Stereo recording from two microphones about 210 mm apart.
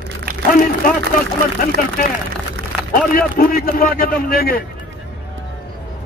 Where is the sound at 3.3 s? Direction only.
40° left (ahead or behind).